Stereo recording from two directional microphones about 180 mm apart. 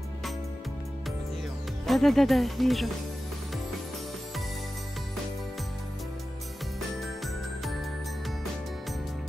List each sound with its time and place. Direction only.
1.9 s speech: centre (ahead or behind)